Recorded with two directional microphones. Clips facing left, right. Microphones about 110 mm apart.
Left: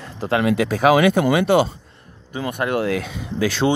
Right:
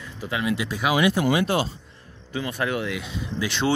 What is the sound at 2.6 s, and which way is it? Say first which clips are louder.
Speech: left 7 dB; 35° left (ahead or behind).